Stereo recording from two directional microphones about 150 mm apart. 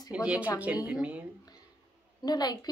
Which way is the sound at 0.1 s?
5° right (ahead or behind).